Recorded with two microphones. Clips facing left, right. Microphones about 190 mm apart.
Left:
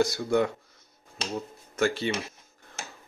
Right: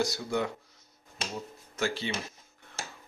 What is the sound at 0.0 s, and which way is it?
Speech, 55° left (ahead or behind).